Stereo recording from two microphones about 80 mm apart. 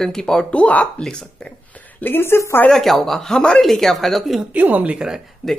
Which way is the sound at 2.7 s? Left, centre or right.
Centre.